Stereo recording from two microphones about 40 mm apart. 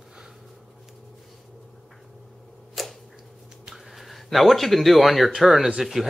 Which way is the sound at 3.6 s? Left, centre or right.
Centre.